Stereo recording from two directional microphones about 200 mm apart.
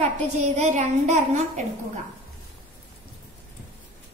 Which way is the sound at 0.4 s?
35° right (ahead or behind).